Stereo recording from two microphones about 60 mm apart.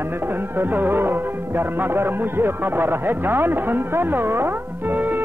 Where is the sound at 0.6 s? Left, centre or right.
Right.